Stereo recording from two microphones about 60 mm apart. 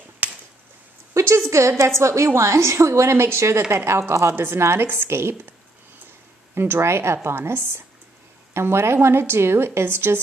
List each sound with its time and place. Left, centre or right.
0.2 s a sound: right
1.1 s a woman's voice: right
6.5 s a woman's voice: right